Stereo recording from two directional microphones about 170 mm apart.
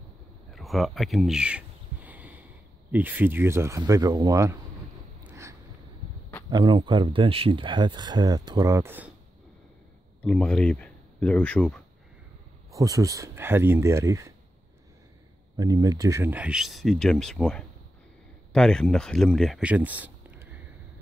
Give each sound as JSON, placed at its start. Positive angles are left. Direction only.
{"t": 0.5, "sound": "a sound", "side_deg": 0}
{"t": 2.9, "sound": "speech", "side_deg": -10}
{"t": 5.3, "sound": "a sound", "side_deg": -20}
{"t": 6.5, "sound": "speech", "side_deg": -30}
{"t": 10.2, "sound": "speech", "side_deg": 5}
{"t": 12.7, "sound": "speech", "side_deg": -20}
{"t": 15.5, "sound": "speech", "side_deg": -20}